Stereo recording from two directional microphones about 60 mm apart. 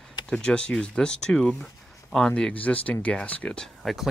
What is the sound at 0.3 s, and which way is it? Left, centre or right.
Speech, centre.